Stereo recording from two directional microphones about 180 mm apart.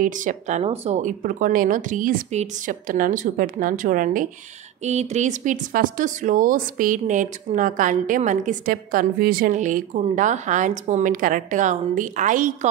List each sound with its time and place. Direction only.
0.0 s a woman's voice: 45° right (ahead or behind)